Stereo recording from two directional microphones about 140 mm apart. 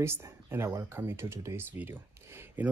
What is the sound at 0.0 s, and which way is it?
Speech, 15° right (ahead or behind).